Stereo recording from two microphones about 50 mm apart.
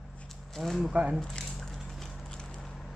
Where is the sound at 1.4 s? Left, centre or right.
Centre.